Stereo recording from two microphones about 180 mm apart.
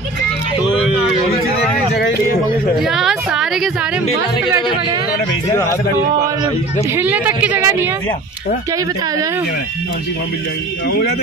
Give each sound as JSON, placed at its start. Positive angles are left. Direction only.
{"t": 2.8, "sound": "a sound", "side_deg": 0}
{"t": 7.0, "sound": "a woman's voice", "side_deg": -10}
{"t": 10.9, "sound": "speech", "side_deg": 60}